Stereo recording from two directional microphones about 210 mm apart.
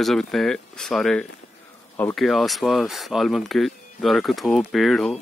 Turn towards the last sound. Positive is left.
turn(degrees=0)  # may be behind; listen again after turning